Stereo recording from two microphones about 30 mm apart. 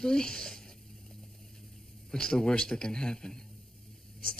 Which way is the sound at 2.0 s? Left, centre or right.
Left.